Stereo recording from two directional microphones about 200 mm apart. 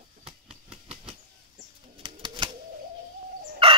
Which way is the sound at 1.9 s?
25° right (ahead or behind).